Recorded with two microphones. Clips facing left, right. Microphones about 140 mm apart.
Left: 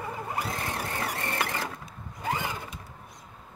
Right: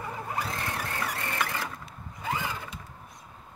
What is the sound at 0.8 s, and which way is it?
Vehicle, 25° left (ahead or behind).